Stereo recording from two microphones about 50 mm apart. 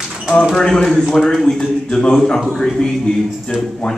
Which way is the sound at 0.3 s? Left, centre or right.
Left.